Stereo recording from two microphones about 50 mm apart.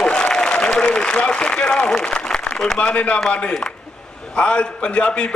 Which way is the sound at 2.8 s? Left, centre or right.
Left.